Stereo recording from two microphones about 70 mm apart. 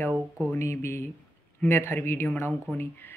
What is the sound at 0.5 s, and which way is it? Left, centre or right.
Speech, left.